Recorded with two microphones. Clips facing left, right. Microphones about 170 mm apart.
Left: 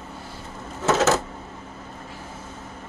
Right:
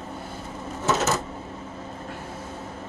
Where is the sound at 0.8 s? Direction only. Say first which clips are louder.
Left 4 dB; 90° left.